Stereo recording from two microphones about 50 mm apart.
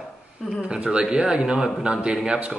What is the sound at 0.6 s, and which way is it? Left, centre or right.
Speech, right.